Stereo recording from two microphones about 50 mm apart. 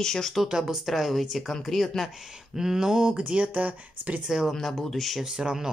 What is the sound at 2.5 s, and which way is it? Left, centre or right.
Speech, centre.